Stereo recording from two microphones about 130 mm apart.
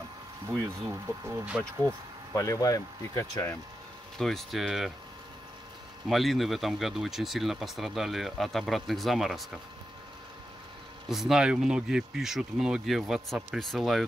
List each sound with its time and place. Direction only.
0.8 s speech: 15° right (ahead or behind)
2.3 s speech: 25° left (ahead or behind)
4.2 s speech: centre (ahead or behind)
6.0 s speech: centre (ahead or behind)
11.1 s speech: centre (ahead or behind)